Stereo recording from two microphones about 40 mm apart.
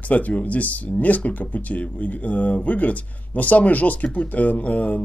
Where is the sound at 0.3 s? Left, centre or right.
Left.